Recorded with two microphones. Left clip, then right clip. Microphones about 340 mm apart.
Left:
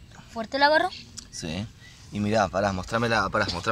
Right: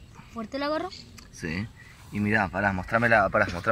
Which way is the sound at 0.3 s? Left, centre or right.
Left.